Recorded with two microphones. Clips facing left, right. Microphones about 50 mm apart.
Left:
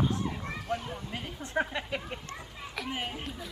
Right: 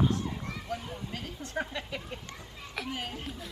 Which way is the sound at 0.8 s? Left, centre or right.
Centre.